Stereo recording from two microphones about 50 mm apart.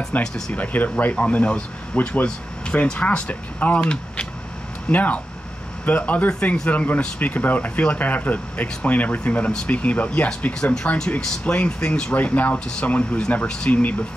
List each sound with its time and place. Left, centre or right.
0.1 s speech: left
2.2 s speech: left
4.9 s speech: left
10.6 s speech: centre
12.1 s speech: left